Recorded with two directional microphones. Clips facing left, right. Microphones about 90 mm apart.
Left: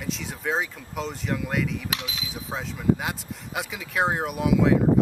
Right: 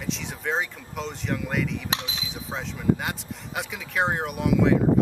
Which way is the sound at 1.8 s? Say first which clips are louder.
Right 1 dB; 30° right (ahead or behind).